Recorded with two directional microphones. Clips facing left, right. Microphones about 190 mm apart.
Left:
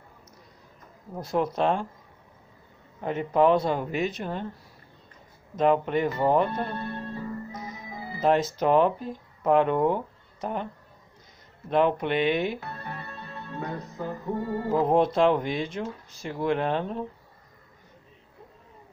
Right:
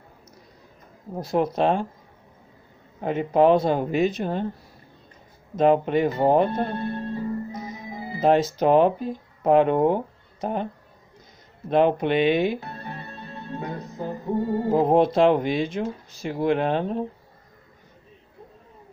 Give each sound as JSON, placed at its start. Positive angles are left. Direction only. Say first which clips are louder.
{"t": 1.5, "sound": "speech", "louder": "right 3 dB", "side_deg": -30}
{"t": 3.0, "sound": "speech", "louder": "right 3 dB", "side_deg": -25}
{"t": 5.6, "sound": "speech", "louder": "right 4 dB", "side_deg": -25}
{"t": 6.0, "sound": "music", "louder": "right 4 dB", "side_deg": -25}
{"t": 8.5, "sound": "speech", "louder": "right 4 dB", "side_deg": -25}
{"t": 11.7, "sound": "speech", "louder": "right 4 dB", "side_deg": -25}
{"t": 12.5, "sound": "music", "louder": "right 2 dB", "side_deg": -25}
{"t": 15.4, "sound": "speech", "louder": "right 5 dB", "side_deg": -90}
{"t": 16.3, "sound": "speech", "louder": "right 4 dB", "side_deg": -25}